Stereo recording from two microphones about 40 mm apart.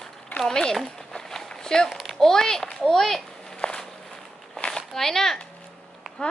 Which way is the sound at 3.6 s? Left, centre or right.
Left.